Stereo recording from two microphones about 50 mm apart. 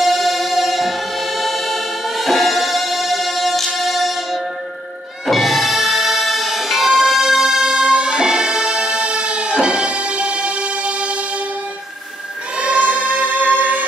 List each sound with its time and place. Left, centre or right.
0.0 s music: centre; by 11.1 s right
12.5 s music: right